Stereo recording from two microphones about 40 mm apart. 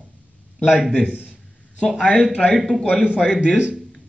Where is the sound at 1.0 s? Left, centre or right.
Right.